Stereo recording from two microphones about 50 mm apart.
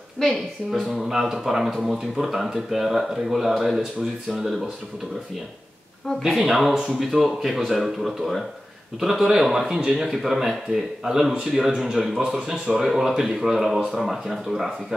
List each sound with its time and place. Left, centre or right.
0.2 s speech: centre
6.2 s a man's voice: centre
12.2 s speech: right
12.4 s speech: centre